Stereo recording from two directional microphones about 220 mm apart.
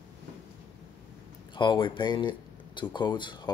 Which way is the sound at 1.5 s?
20° left (ahead or behind).